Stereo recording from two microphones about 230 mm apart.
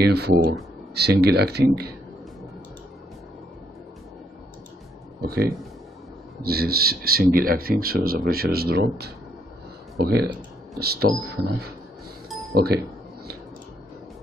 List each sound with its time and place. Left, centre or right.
0.0 s speech: right
5.2 s speech: right
12.5 s speech: right